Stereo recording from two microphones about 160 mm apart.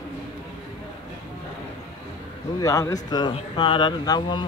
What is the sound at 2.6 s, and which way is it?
Speech, 20° left (ahead or behind).